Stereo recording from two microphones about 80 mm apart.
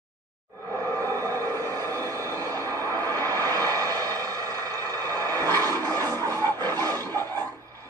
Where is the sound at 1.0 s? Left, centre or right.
Right.